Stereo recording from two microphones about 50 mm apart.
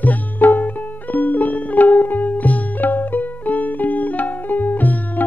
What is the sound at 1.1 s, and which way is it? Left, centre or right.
Music, left.